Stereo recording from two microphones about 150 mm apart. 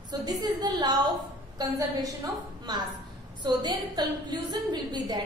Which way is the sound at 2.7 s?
30° right (ahead or behind).